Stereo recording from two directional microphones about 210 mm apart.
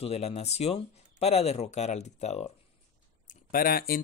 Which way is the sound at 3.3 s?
45° left (ahead or behind).